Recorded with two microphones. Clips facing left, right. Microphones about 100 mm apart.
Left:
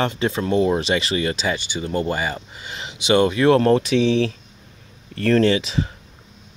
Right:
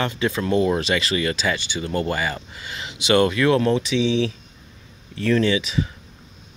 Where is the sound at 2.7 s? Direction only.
25° left (ahead or behind).